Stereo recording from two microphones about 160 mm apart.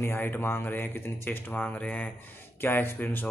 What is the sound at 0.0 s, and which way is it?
Speech, 15° left (ahead or behind).